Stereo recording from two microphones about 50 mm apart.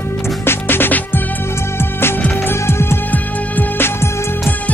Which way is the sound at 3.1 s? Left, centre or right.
Left.